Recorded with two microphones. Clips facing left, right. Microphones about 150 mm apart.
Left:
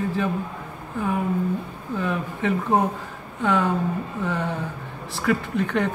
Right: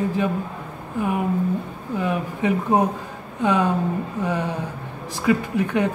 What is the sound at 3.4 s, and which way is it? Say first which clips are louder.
Speech: right 2 dB; 15° right (ahead or behind).